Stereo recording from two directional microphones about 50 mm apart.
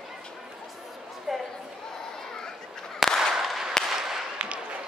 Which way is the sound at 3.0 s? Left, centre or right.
Centre.